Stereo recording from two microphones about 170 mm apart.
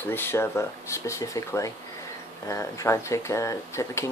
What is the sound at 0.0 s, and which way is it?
Speech, 15° left (ahead or behind).